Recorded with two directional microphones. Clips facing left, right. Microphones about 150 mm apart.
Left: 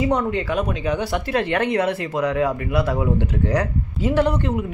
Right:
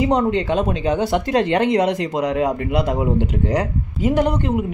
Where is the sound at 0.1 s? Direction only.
25° right (ahead or behind).